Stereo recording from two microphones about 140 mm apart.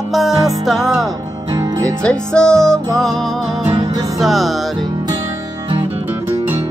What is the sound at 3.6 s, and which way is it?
Music, 50° right (ahead or behind).